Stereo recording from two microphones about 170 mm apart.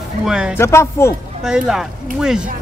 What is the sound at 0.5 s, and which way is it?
Speech, 15° left (ahead or behind).